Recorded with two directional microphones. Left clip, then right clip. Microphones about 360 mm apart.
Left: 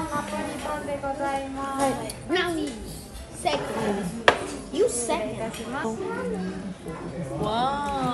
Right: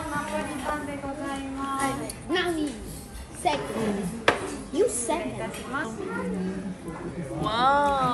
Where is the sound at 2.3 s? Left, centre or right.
Centre.